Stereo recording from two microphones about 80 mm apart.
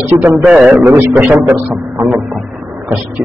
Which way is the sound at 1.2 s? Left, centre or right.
Right.